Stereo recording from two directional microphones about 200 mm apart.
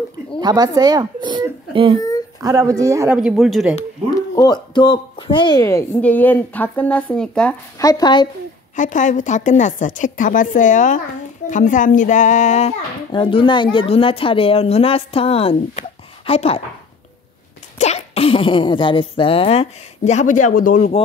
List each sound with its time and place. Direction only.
0.4 s speech: 20° right (ahead or behind)
3.2 s speech: centre (ahead or behind)
4.4 s a woman's voice: 20° left (ahead or behind); by 7.5 s 5° left (ahead or behind)
7.8 s a child's voice: 20° left (ahead or behind)
8.7 s a woman's voice: 40° left (ahead or behind)
17.7 s a child's voice: 35° left (ahead or behind)